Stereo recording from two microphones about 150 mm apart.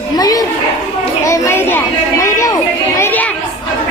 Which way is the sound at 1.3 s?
15° left (ahead or behind).